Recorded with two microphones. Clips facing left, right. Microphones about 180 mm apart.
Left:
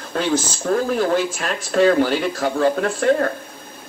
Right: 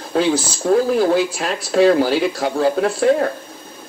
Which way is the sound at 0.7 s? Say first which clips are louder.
Right 4 dB; 35° right (ahead or behind).